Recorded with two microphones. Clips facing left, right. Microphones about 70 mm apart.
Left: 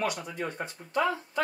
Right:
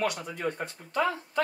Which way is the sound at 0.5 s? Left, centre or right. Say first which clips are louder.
Even; right.